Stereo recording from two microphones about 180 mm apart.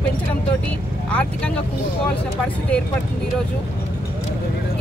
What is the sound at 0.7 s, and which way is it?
Vehicle, 5° left (ahead or behind).